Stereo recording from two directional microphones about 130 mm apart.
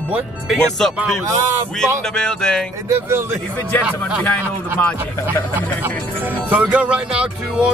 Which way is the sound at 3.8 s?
10° right (ahead or behind).